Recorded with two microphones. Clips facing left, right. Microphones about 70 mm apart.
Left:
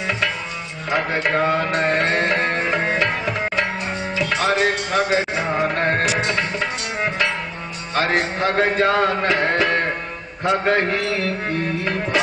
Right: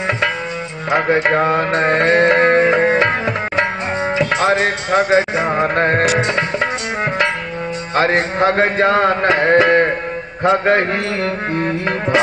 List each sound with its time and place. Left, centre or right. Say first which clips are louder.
0.9 s music: right 5 dB; right
4.2 s music: right 3 dB; right
7.9 s music: right 4 dB; right